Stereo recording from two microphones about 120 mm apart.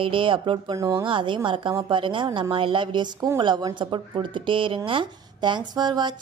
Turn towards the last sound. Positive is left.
turn(degrees=-35)  # may be behind; listen again after turning